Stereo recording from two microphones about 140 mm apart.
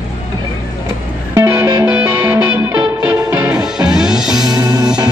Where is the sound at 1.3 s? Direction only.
20° right (ahead or behind); by 4.5 s 5° right (ahead or behind).